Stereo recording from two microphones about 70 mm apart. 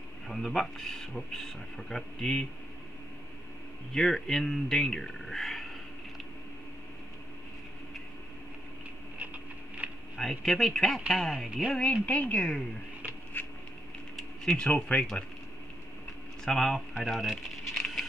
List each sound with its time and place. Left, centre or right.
0.3 s speech: centre
3.9 s speech: centre
9.2 s patter: right
10.1 s speech: centre
11.9 s a woman's voice: centre
13.4 s patter: left
14.1 s speech: centre
16.4 s speech: centre
17.7 s patter: centre